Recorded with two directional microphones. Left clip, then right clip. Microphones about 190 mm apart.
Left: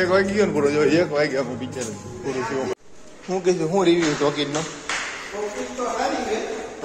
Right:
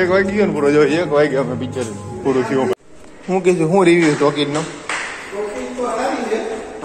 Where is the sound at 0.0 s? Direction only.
15° left (ahead or behind).